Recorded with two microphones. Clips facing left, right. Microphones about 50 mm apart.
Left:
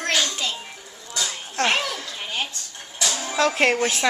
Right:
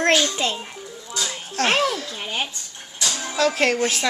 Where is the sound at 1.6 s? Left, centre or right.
Centre.